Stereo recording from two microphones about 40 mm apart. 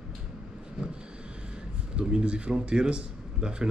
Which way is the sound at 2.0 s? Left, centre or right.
Right.